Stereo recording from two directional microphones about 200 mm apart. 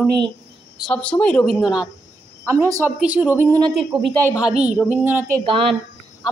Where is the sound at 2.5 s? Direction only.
15° right (ahead or behind).